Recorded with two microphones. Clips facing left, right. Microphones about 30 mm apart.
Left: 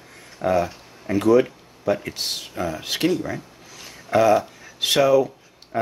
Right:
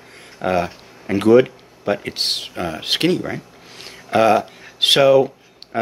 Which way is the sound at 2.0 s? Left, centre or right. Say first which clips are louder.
Right 6 dB; right.